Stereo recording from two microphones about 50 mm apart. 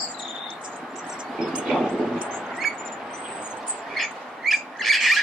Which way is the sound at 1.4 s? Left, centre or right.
Right.